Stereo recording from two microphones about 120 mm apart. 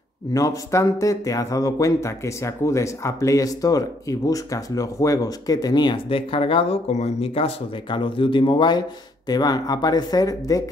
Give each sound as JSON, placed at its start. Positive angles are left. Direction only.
{"t": 0.3, "sound": "speech", "side_deg": 30}